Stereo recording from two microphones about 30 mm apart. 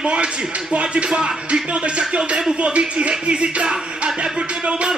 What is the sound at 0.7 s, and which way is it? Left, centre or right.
Music, right.